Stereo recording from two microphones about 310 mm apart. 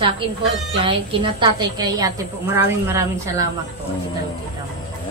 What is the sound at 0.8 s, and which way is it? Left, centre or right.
A woman's voice, centre.